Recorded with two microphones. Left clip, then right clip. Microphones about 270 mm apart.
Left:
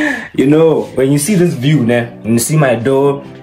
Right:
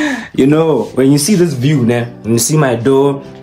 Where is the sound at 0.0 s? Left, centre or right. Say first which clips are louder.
Even; centre.